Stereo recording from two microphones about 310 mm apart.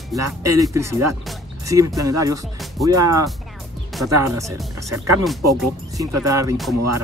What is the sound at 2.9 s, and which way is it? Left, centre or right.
Speech, right.